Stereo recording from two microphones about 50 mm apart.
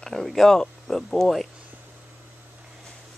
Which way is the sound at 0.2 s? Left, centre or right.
Centre.